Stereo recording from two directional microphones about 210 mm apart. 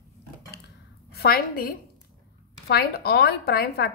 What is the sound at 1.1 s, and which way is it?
A woman's voice, 45° left (ahead or behind).